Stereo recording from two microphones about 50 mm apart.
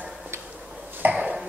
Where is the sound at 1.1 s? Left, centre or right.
Right.